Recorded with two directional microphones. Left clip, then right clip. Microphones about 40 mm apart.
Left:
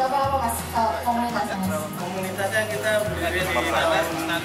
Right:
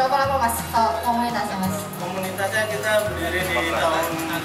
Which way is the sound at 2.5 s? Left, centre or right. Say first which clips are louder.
Right 2 dB; centre.